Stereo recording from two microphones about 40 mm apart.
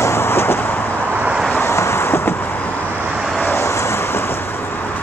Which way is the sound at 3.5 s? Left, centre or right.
Left.